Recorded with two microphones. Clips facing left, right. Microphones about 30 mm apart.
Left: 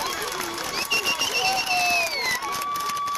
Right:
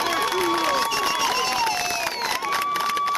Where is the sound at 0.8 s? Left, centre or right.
Centre.